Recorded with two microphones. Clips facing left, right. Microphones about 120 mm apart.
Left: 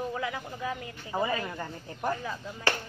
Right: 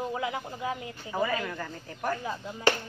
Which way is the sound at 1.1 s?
25° left (ahead or behind).